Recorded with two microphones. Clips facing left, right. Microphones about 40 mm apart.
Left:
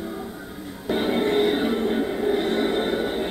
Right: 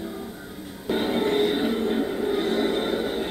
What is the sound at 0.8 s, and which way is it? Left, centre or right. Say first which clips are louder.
Music: left 1 dB; centre.